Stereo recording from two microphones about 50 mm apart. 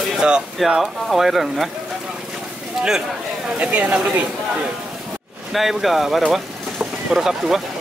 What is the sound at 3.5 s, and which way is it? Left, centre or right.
Speech, right.